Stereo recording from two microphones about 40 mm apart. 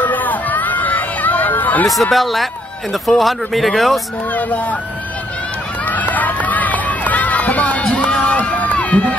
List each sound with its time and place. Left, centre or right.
0.0 s a sound: left
1.9 s speech: centre
4.4 s speech: left
5.9 s run: left
8.1 s crowd: left